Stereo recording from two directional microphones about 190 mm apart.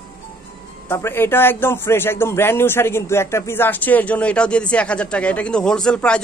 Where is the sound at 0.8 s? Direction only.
10° left (ahead or behind).